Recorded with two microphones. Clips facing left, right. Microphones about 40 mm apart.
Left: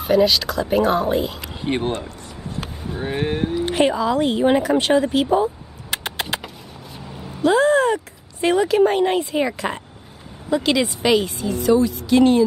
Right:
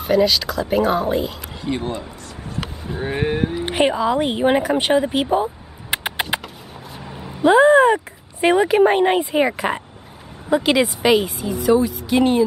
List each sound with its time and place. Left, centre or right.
0.0 s speech: centre
1.6 s speech: left
3.0 s a woman's voice: centre
3.5 s a woman's voice: centre